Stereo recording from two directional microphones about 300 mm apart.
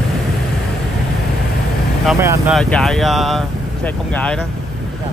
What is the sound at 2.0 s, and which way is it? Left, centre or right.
Speech, centre.